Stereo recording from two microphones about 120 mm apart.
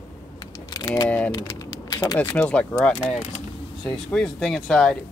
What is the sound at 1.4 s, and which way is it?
Typing, 30° left (ahead or behind).